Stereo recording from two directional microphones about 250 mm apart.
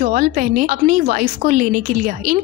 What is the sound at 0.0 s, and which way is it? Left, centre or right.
Speech, right.